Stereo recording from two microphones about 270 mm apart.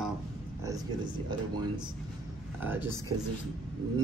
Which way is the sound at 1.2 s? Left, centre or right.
Centre.